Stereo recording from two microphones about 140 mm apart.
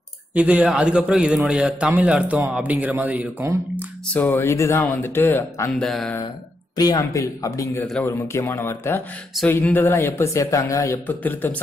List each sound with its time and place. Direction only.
0.3 s a man's voice: 10° right (ahead or behind)
4.1 s speech: 15° left (ahead or behind)
5.9 s speech: centre (ahead or behind)
6.8 s speech: 30° left (ahead or behind)
11.1 s speech: 10° left (ahead or behind)